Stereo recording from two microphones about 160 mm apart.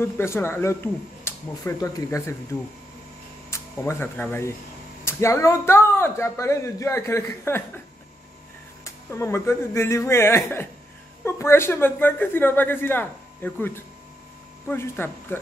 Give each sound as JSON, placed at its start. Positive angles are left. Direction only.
{"t": 0.0, "sound": "a man's voice", "side_deg": 15}
{"t": 3.4, "sound": "a man's voice", "side_deg": 15}
{"t": 8.8, "sound": "a man's voice", "side_deg": 15}